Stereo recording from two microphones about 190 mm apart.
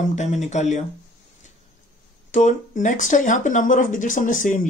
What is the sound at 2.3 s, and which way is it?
Speech, 40° left (ahead or behind).